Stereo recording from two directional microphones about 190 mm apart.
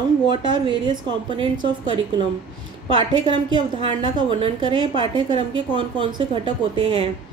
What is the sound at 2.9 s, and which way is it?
A woman's voice, 25° right (ahead or behind).